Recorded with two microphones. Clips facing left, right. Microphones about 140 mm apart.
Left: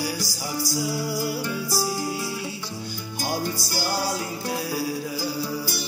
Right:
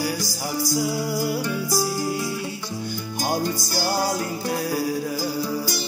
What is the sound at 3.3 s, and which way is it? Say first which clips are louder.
Music: right 3 dB; 15° right (ahead or behind).